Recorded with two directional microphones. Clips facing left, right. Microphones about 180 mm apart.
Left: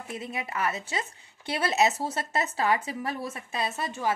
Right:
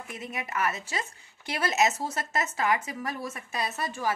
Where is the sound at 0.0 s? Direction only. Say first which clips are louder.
Left 2 dB; 30° left (ahead or behind).